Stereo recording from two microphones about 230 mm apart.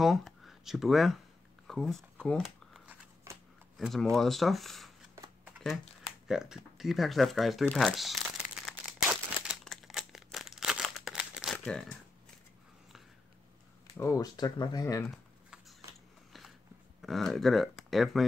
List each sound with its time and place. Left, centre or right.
0.0 s a sound: centre
3.3 s shuffling cards: centre
3.7 s speech: centre
5.1 s a sound: centre
6.2 s speech: centre
9.1 s crumpling: centre
13.9 s speech: centre
17.0 s speech: centre